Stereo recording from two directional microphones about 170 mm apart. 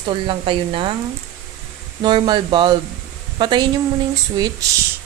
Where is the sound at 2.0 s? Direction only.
25° right (ahead or behind).